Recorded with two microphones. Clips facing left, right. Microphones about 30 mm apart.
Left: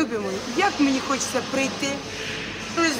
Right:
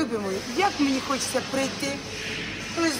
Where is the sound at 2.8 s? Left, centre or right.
Left.